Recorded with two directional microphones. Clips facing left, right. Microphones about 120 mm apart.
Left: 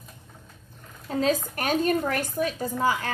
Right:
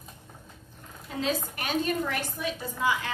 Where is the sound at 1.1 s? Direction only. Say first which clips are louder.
Left 6 dB; 40° left (ahead or behind).